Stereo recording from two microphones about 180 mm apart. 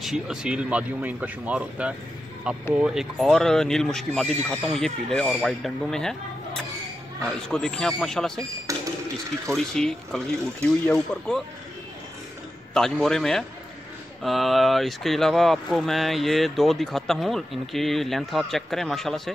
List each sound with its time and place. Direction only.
0.0 s speech: 5° right (ahead or behind)
8.7 s cash register: 20° right (ahead or behind)
9.5 s speech: 5° left (ahead or behind)
12.7 s speech: 5° left (ahead or behind)